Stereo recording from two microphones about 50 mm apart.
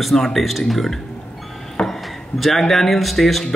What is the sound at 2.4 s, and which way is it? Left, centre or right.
A man's voice, centre.